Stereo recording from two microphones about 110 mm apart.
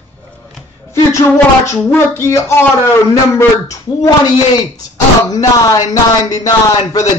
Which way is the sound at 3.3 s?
30° left (ahead or behind).